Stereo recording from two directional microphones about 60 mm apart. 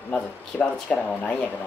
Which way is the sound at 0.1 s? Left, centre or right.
Left.